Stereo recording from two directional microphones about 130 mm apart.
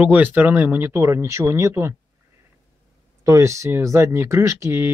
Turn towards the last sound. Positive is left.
turn(degrees=-20)  # may be behind; listen again after turning